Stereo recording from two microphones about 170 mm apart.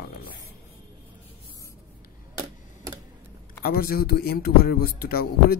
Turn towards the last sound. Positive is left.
turn(degrees=60)  # may be behind; listen again after turning